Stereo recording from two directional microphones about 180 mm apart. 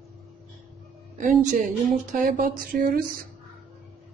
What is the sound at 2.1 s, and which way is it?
Speech, 50° right (ahead or behind).